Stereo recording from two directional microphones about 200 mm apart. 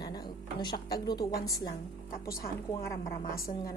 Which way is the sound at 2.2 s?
50° left (ahead or behind).